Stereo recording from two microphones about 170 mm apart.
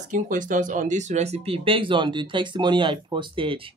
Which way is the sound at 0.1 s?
50° right (ahead or behind).